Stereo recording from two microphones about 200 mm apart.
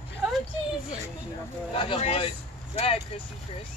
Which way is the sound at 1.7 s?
25° left (ahead or behind).